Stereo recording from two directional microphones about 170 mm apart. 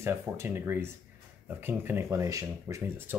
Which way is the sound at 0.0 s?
15° right (ahead or behind).